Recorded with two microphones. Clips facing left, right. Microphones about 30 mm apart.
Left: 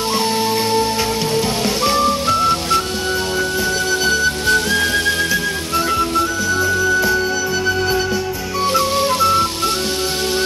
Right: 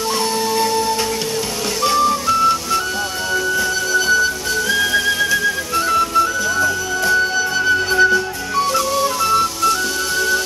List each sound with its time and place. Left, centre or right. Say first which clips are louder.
0.5 s music: left 1 dB; left
2.0 s music: even; left
3.9 s music: right 3 dB; left
5.3 s music: right 1 dB; centre
6.6 s music: left 2 dB; centre
8.9 s music: left 1 dB; left